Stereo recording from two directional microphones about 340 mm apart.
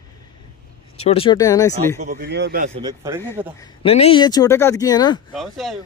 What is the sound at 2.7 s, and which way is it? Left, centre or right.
Speech, centre.